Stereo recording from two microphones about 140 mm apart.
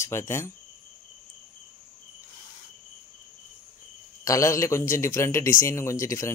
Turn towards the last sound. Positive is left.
turn(degrees=20)  # may be behind; listen again after turning